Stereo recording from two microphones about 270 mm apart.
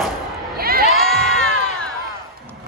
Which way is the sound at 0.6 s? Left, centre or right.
Right.